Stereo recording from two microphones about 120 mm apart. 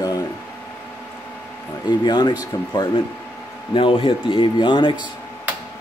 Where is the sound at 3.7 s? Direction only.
45° left (ahead or behind).